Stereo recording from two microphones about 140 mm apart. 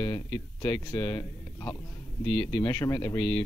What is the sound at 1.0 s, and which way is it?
Speech, 15° left (ahead or behind).